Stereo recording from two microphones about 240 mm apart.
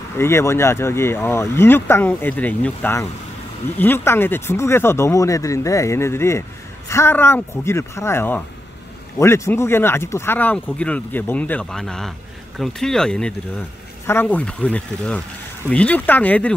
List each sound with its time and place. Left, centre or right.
0.2 s speech: centre